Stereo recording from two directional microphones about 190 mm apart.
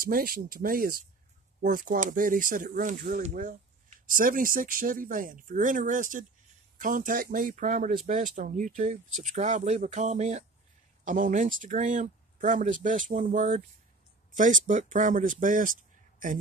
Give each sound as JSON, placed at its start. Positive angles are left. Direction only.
{"t": 0.0, "sound": "speech", "side_deg": -50}